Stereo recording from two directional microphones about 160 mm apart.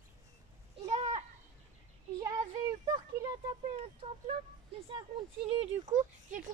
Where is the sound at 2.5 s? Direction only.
30° right (ahead or behind).